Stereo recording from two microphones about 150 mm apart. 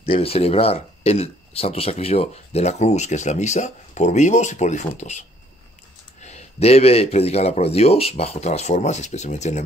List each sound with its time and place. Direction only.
0.0 s speech: 40° left (ahead or behind)
6.2 s speech: 45° left (ahead or behind)